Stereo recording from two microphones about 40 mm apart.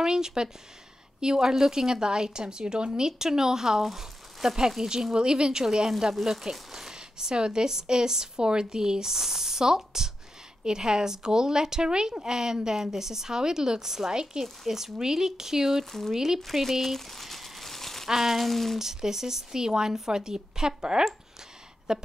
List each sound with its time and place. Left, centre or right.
0.0 s a woman's voice: centre
14.4 s speech: centre
15.8 s speech: centre
16.1 s speech: centre
16.4 s crumpling: centre
18.0 s a sound: centre
18.8 s speech: centre